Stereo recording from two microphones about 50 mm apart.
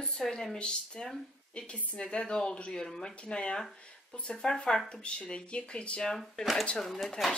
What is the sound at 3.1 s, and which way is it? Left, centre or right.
Speech, left.